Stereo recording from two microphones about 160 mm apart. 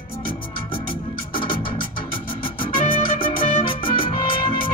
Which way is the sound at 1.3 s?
30° left (ahead or behind).